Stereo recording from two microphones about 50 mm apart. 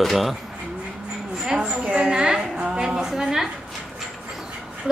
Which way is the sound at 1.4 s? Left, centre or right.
Centre.